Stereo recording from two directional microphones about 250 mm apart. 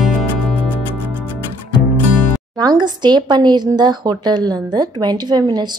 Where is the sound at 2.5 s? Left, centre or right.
Centre.